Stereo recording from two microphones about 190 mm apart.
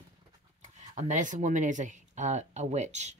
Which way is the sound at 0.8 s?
40° right (ahead or behind).